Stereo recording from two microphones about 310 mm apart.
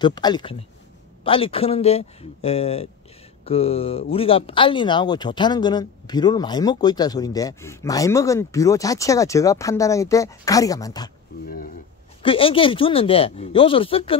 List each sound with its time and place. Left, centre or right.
0.0 s speech: centre
12.2 s speech: centre